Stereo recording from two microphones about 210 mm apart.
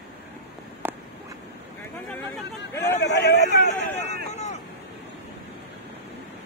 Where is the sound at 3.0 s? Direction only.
50° left (ahead or behind).